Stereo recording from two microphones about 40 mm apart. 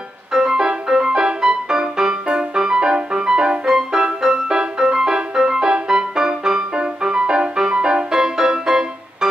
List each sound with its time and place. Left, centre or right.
0.3 s music: centre